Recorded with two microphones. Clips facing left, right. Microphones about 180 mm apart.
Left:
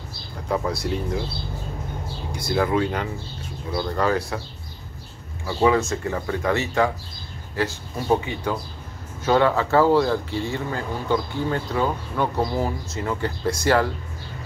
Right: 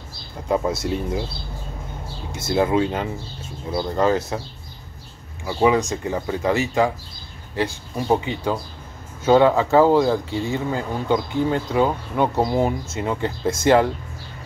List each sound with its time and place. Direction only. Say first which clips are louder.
0.5 s speech: right 3 dB; 20° right (ahead or behind)
2.3 s speech: right 3 dB; 25° right (ahead or behind)
5.4 s speech: right 1 dB; 15° right (ahead or behind)